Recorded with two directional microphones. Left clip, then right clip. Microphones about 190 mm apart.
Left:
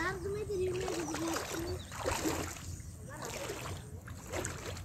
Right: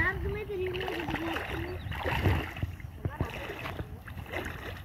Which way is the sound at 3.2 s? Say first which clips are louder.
Left 1 dB; 30° right (ahead or behind).